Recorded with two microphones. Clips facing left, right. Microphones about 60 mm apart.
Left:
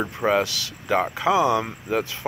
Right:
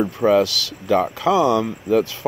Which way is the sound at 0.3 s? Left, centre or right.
Centre.